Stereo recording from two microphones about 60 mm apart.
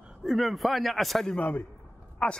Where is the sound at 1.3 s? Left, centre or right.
Left.